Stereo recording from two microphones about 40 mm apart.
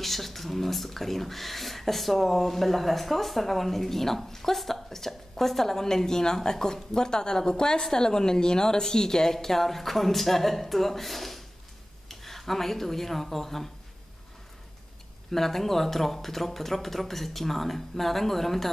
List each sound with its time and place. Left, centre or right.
0.0 s speech: centre
15.3 s speech: centre